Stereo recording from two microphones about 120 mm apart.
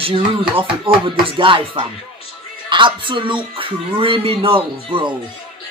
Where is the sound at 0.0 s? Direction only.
50° right (ahead or behind).